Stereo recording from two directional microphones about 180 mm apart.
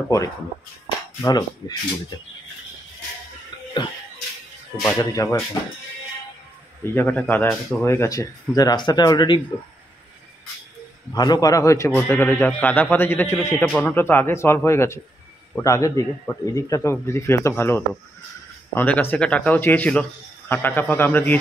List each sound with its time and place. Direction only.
1.2 s speech: 25° left (ahead or behind)
4.8 s speech: 20° left (ahead or behind)
6.8 s speech: 10° left (ahead or behind)
11.1 s speech: 20° left (ahead or behind)